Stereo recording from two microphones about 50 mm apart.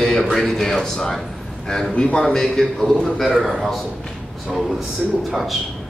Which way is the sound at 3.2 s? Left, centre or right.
Centre.